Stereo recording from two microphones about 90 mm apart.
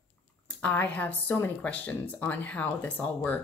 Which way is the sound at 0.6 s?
20° left (ahead or behind).